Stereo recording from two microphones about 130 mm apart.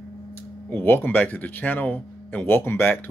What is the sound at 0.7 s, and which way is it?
Speech, 15° left (ahead or behind).